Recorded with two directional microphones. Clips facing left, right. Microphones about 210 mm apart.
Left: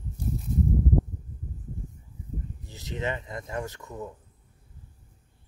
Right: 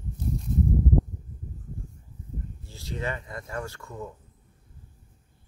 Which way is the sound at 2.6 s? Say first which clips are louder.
Left 1 dB; 20° left (ahead or behind).